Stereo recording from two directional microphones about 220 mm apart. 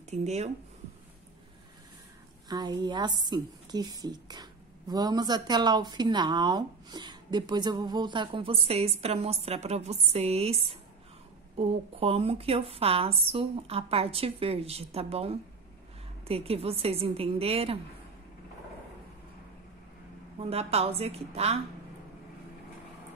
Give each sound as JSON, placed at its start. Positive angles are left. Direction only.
{"t": 0.1, "sound": "speech", "side_deg": -30}
{"t": 2.4, "sound": "a woman's voice", "side_deg": -20}
{"t": 20.3, "sound": "a woman's voice", "side_deg": -25}